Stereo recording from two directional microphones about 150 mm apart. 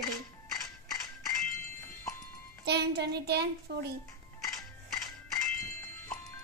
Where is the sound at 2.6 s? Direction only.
90° right.